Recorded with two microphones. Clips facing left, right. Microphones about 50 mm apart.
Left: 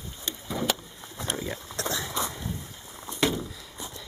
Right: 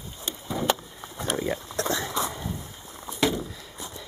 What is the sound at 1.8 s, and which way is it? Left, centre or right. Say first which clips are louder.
Dog: right 2 dB; centre.